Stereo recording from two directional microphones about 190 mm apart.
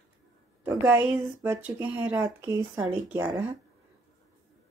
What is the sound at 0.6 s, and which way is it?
Speech, 5° right (ahead or behind).